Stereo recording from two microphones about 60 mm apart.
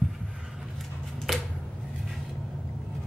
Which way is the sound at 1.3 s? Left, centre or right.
Centre.